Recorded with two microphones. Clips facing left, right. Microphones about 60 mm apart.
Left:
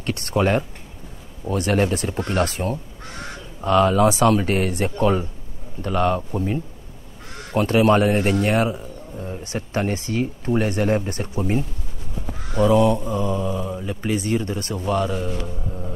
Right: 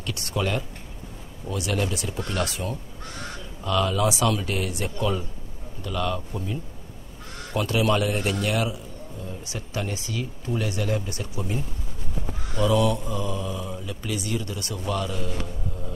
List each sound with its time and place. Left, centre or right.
0.0 s a man's voice: left